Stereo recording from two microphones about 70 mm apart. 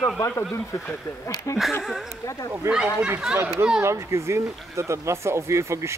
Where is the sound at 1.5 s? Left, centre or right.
Left.